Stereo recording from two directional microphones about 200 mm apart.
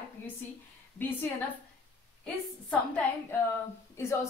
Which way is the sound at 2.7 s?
5° left (ahead or behind).